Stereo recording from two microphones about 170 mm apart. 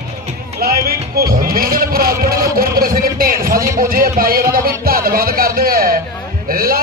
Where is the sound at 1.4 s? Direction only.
60° right (ahead or behind).